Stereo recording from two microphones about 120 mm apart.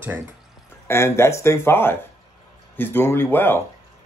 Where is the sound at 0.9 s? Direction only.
20° left (ahead or behind).